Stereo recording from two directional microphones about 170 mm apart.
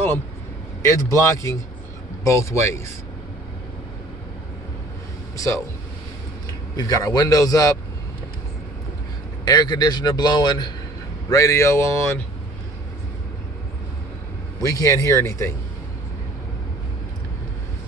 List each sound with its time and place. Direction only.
0.8 s speech: 20° left (ahead or behind)
6.8 s speech: 20° left (ahead or behind)
9.4 s speech: 25° left (ahead or behind)
14.6 s speech: 20° left (ahead or behind)